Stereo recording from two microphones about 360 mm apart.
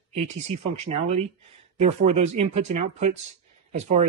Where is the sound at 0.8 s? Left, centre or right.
Centre.